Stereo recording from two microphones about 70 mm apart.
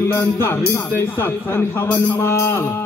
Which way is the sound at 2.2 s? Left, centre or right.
Left.